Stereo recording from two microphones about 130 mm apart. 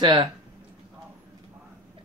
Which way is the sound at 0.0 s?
40° right (ahead or behind).